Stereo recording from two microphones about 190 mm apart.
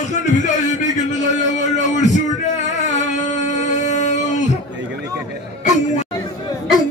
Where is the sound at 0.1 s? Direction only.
40° left (ahead or behind).